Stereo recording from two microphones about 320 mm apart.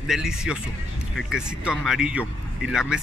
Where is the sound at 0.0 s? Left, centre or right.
Centre.